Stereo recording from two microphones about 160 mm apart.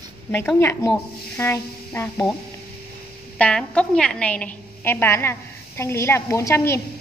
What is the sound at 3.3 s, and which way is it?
A woman's voice, 5° left (ahead or behind).